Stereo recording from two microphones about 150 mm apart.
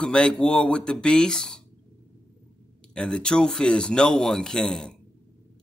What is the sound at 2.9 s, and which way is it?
Speech, 5° left (ahead or behind).